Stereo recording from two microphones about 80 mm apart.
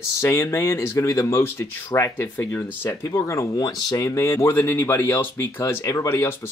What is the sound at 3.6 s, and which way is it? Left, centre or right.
Speech, left.